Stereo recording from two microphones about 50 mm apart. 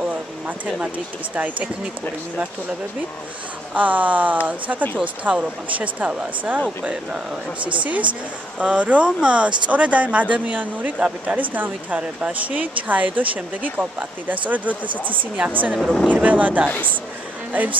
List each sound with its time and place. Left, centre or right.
0.7 s a woman's voice: right
3.7 s a woman's voice: right
7.8 s a woman's voice: right